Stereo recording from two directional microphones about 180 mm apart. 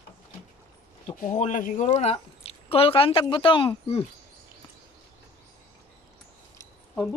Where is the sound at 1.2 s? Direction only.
40° left (ahead or behind).